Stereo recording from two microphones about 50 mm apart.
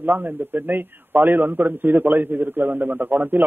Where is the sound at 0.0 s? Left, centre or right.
Right.